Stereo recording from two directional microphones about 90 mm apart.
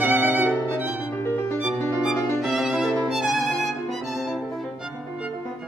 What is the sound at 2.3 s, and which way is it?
Violin, centre (ahead or behind).